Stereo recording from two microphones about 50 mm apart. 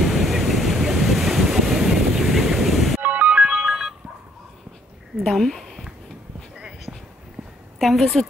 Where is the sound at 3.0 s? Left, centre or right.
Right.